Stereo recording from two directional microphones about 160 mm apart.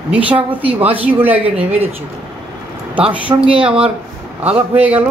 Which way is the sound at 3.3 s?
25° right (ahead or behind).